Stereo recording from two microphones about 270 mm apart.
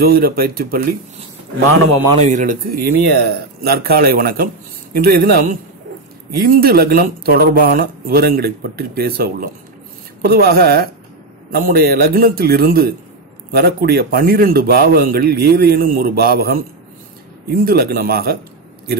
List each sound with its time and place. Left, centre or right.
0.0 s speech: right
2.1 s speech: right
17.6 s speech: right